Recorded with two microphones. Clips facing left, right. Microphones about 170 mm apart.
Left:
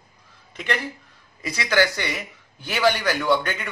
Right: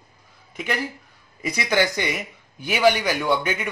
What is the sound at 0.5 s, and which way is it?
Speech, 10° right (ahead or behind).